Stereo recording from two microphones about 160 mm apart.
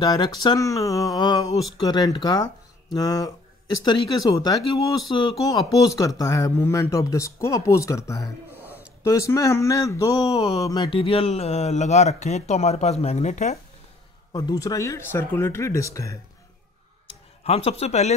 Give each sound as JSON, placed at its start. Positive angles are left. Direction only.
{"t": 0.0, "sound": "speech", "side_deg": 25}
{"t": 8.5, "sound": "a sound", "side_deg": -10}
{"t": 9.3, "sound": "speech", "side_deg": 20}
{"t": 14.3, "sound": "speech", "side_deg": 25}
{"t": 17.4, "sound": "speech", "side_deg": 40}